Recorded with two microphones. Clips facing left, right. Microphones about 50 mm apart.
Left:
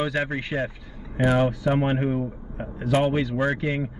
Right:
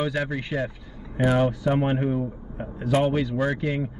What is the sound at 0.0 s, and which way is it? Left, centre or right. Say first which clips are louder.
A man's voice: left 1 dB; left.